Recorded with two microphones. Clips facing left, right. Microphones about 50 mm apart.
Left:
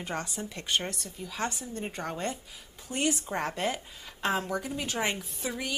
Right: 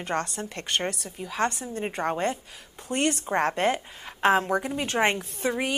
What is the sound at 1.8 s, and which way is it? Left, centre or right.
Speech, right.